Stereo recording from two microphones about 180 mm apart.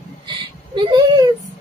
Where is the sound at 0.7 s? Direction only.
25° right (ahead or behind).